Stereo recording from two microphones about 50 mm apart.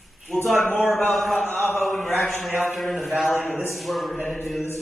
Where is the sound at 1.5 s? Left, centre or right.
Left.